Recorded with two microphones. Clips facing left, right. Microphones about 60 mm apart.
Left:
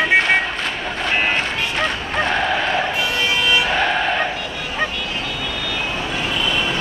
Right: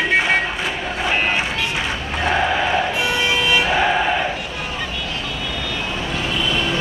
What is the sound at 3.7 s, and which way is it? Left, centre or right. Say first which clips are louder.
Vehicle: right 1 dB; centre.